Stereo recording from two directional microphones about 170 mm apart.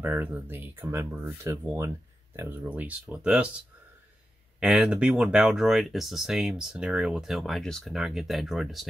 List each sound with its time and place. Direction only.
0.0 s speech: 10° right (ahead or behind)
4.6 s speech: 5° right (ahead or behind)